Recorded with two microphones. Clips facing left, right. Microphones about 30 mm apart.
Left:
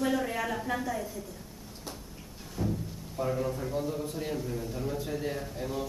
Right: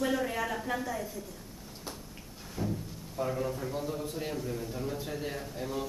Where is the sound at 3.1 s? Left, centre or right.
Centre.